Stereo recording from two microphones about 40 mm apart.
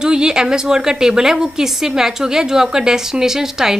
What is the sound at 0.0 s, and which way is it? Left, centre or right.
A woman's voice, centre.